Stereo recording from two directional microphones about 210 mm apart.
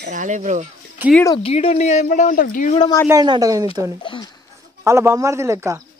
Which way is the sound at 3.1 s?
20° right (ahead or behind).